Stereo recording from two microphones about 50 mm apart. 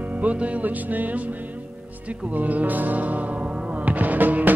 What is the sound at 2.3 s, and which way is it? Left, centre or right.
Music, right.